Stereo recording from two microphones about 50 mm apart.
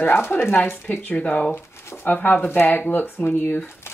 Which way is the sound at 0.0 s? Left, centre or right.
Left.